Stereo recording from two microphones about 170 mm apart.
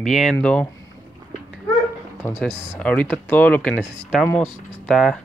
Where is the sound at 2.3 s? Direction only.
5° right (ahead or behind).